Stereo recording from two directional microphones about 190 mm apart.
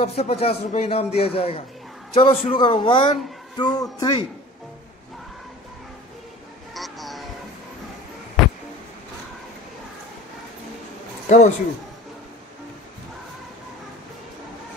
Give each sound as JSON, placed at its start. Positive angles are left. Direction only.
{"t": 0.0, "sound": "speech", "side_deg": 35}
{"t": 6.7, "sound": "a sound", "side_deg": 0}
{"t": 8.4, "sound": "music", "side_deg": 0}
{"t": 11.2, "sound": "a man's voice", "side_deg": 40}